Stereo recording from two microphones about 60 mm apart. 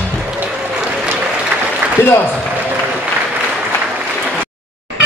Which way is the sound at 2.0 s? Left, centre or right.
Left.